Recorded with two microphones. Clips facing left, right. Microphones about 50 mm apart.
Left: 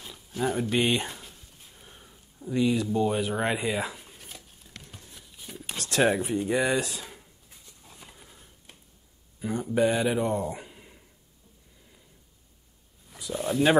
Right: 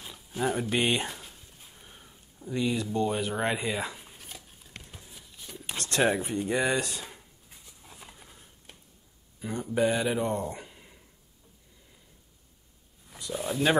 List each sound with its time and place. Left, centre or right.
0.0 s a sound: centre
9.4 s speech: centre
13.1 s speech: centre